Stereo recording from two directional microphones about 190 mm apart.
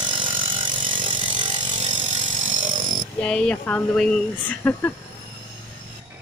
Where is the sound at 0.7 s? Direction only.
25° right (ahead or behind); by 2.9 s 45° right (ahead or behind).